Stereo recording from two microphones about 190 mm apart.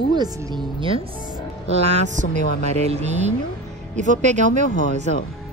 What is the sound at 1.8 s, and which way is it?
Speech, 35° right (ahead or behind).